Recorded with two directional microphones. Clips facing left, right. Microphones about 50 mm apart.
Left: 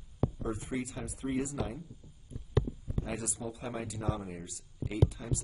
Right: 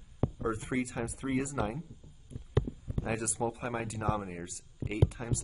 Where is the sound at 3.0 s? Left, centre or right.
Right.